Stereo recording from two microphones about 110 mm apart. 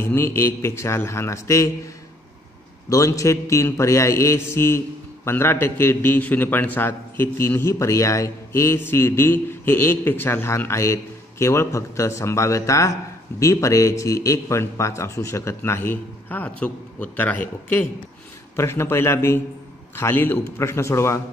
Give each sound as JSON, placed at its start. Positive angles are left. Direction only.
{"t": 0.0, "sound": "mantra", "side_deg": 20}
{"t": 2.9, "sound": "mantra", "side_deg": 30}